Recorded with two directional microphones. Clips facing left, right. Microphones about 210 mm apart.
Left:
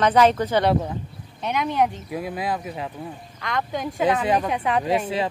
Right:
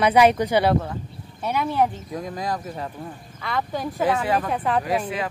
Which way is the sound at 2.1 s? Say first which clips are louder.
Left 1 dB; 5° left (ahead or behind).